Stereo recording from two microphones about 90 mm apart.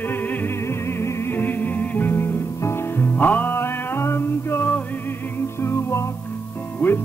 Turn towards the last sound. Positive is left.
turn(degrees=20)  # may be behind; listen again after turning